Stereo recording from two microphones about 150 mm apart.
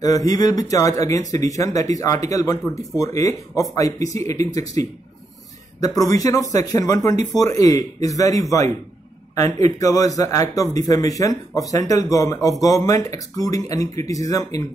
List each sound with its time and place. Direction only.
0.0 s speech: 25° left (ahead or behind)
9.7 s speech: 20° left (ahead or behind)